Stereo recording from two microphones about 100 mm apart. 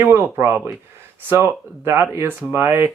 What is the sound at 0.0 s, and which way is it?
Speech, 25° right (ahead or behind).